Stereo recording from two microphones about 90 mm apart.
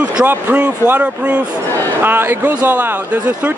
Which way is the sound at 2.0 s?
25° right (ahead or behind).